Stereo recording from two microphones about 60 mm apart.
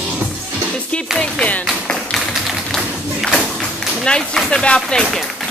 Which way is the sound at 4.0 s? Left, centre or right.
Centre.